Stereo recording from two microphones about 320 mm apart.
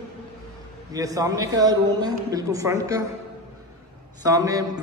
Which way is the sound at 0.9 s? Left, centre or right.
Centre.